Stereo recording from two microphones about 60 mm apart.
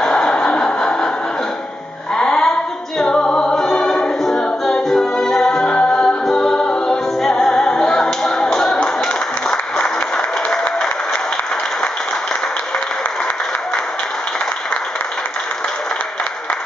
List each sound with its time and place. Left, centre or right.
0.0 s a sound: centre
2.1 s music: centre
9.5 s applause: centre